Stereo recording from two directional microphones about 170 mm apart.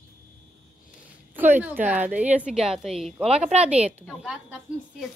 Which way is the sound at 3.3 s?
35° right (ahead or behind).